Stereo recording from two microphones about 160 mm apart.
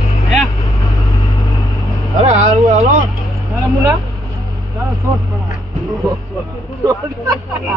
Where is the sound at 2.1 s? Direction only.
40° right (ahead or behind).